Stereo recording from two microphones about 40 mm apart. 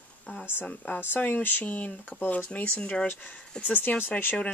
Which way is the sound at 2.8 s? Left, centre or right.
Left.